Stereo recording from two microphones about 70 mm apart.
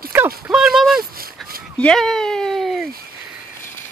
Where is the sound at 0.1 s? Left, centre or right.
Right.